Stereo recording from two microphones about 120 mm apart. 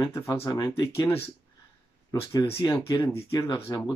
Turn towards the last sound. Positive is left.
turn(degrees=20)  # may be behind; listen again after turning